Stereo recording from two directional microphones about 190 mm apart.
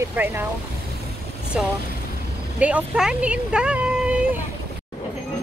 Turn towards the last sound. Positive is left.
turn(degrees=-5)  # may be behind; listen again after turning